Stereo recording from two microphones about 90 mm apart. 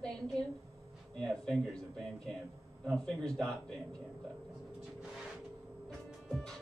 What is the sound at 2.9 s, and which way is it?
Speech, 10° left (ahead or behind).